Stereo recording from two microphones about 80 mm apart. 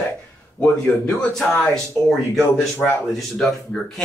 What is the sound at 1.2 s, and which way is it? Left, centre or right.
Speech, centre.